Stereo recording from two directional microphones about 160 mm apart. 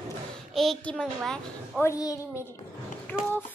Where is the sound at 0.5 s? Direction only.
Centre (ahead or behind).